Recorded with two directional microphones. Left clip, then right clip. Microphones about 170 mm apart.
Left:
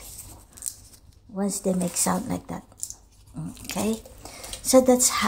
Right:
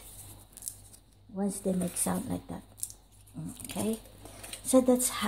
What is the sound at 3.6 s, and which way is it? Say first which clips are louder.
Speech: left 6 dB; 5° left (ahead or behind).